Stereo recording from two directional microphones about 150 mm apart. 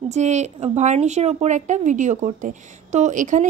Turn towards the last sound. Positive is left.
turn(degrees=-60)  # may be behind; listen again after turning